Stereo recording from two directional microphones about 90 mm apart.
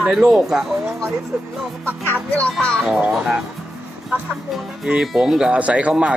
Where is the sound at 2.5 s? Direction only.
10° left (ahead or behind).